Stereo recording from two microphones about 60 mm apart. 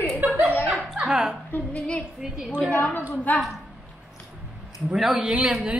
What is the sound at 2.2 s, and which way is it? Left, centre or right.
Speech, centre.